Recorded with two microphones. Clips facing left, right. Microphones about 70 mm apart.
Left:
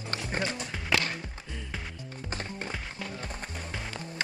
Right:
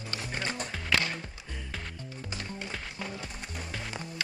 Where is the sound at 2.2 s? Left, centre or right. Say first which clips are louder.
Left 3 dB; left.